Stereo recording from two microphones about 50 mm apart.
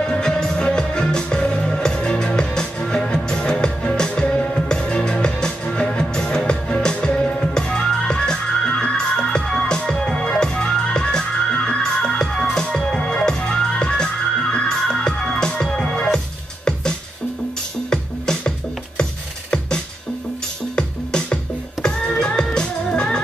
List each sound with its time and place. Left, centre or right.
0.0 s music: centre
17.8 s music: centre
20.7 s music: centre